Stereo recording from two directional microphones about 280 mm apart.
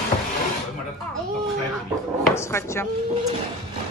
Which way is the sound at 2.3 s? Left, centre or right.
Centre.